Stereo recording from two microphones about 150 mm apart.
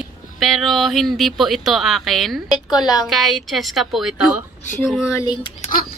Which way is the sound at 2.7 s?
25° left (ahead or behind).